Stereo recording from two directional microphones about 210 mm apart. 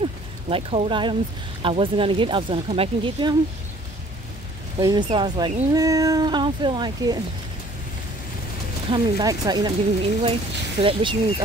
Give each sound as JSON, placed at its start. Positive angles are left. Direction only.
{"t": 0.0, "sound": "a sound", "side_deg": -25}
{"t": 1.6, "sound": "speech", "side_deg": -25}
{"t": 4.7, "sound": "speech", "side_deg": -20}
{"t": 8.9, "sound": "speech", "side_deg": -20}